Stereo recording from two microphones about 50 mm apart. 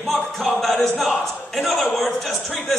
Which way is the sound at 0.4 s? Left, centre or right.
Centre.